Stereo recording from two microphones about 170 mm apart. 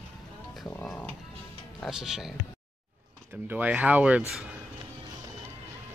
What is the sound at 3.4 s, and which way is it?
Speech, 10° right (ahead or behind).